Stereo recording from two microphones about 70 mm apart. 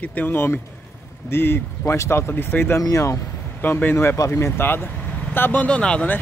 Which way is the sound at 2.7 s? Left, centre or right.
Left.